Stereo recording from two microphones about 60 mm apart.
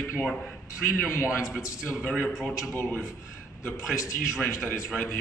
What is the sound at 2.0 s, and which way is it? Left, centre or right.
Speech, left.